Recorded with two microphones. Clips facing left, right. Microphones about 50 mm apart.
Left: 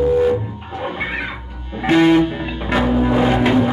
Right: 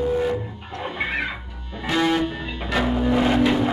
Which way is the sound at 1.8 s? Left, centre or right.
Left.